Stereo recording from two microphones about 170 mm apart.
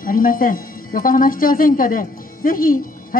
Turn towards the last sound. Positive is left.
turn(degrees=55)  # may be behind; listen again after turning